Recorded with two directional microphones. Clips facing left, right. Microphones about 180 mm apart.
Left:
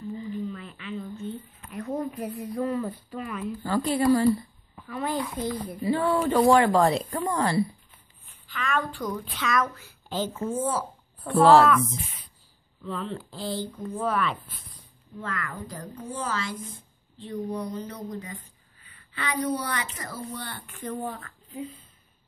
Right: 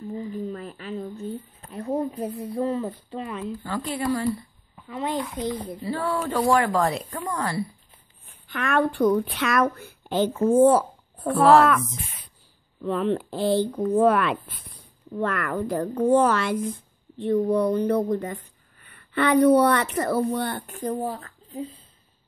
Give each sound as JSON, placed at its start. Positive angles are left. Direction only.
{"t": 0.1, "sound": "a sound", "side_deg": -40}
{"t": 3.6, "sound": "a woman's voice", "side_deg": 35}
{"t": 4.8, "sound": "a child's voice", "side_deg": -20}
{"t": 5.8, "sound": "speech", "side_deg": 15}
{"t": 8.5, "sound": "speech", "side_deg": -60}
{"t": 12.8, "sound": "speech", "side_deg": -60}